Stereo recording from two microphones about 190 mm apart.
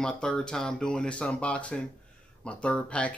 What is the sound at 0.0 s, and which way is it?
Speech, 5° left (ahead or behind).